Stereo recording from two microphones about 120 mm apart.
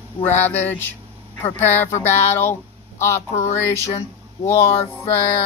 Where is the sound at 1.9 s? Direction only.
20° left (ahead or behind).